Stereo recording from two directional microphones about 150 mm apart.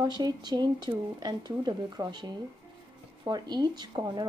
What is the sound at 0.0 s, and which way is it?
Speech, 30° right (ahead or behind).